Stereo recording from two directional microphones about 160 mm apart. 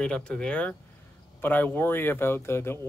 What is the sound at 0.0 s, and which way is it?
Speech, 5° left (ahead or behind).